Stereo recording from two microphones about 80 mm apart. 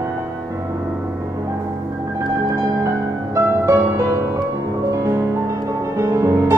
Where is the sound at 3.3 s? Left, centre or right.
Right.